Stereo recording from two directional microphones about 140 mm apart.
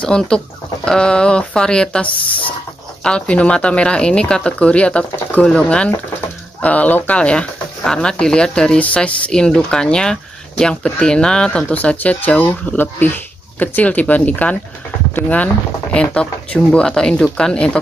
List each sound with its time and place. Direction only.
0.0 s speech: 5° left (ahead or behind)
2.0 s speech: 40° left (ahead or behind)
3.0 s speech: 5° left (ahead or behind)